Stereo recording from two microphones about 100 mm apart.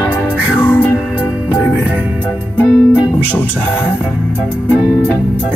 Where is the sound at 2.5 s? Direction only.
15° left (ahead or behind).